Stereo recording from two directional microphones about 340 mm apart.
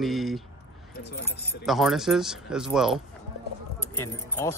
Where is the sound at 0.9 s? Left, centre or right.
Left.